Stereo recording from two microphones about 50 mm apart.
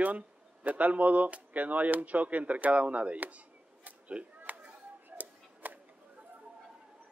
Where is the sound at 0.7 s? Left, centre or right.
Right.